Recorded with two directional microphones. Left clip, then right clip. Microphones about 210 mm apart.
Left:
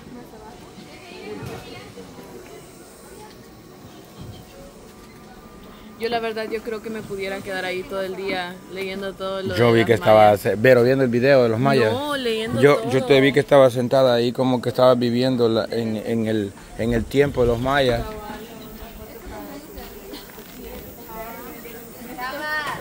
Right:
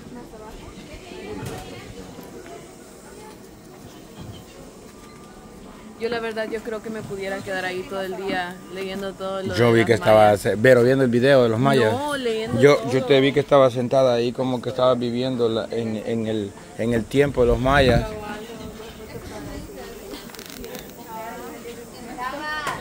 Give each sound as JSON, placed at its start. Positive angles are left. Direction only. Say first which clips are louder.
{"t": 5.9, "sound": "a man's voice", "louder": "left 2 dB", "side_deg": 35}
{"t": 6.2, "sound": "speech", "louder": "left 1 dB", "side_deg": 10}
{"t": 9.5, "sound": "speech", "louder": "left 1 dB", "side_deg": 0}
{"t": 12.1, "sound": "speech", "louder": "left 1 dB", "side_deg": 30}
{"t": 12.5, "sound": "speech", "louder": "even", "side_deg": 0}
{"t": 12.9, "sound": "speech", "louder": "left 2 dB", "side_deg": 10}
{"t": 16.7, "sound": "speech", "louder": "left 1 dB", "side_deg": 5}
{"t": 22.2, "sound": "a sound", "louder": "left 2 dB", "side_deg": 50}